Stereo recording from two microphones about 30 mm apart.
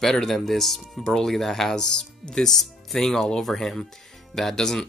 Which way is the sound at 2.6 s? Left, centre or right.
Centre.